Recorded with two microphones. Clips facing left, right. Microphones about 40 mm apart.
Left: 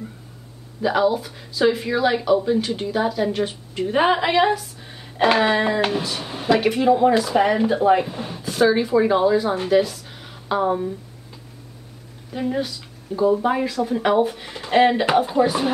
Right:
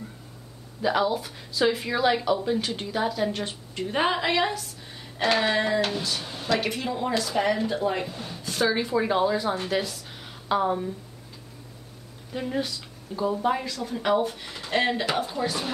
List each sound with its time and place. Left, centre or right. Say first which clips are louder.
0.8 s speech: left 5 dB; centre
8.1 s speech: left 6 dB; left
8.4 s speech: left 7 dB; centre
12.3 s speech: left 5 dB; centre; by 15.7 s left